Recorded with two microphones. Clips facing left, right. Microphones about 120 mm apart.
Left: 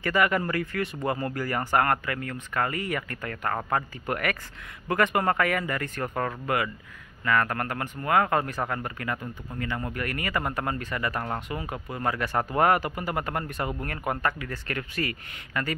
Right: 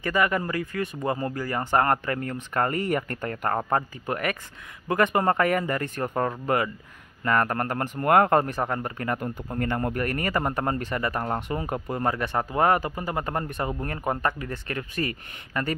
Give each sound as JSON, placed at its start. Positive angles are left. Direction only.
{"t": 0.0, "sound": "speech", "side_deg": -20}
{"t": 8.0, "sound": "speech", "side_deg": -45}
{"t": 8.5, "sound": "speech", "side_deg": -25}
{"t": 9.2, "sound": "speech", "side_deg": -50}
{"t": 10.0, "sound": "speech", "side_deg": -35}
{"t": 11.6, "sound": "speech", "side_deg": -40}
{"t": 12.0, "sound": "speech", "side_deg": -25}
{"t": 12.4, "sound": "speech", "side_deg": -15}
{"t": 12.6, "sound": "speech", "side_deg": -25}